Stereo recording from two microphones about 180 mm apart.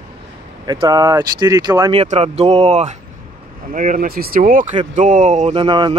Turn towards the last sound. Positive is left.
turn(degrees=-25)  # may be behind; listen again after turning